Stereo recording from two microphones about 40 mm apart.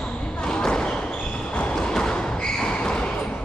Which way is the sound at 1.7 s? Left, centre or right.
Centre.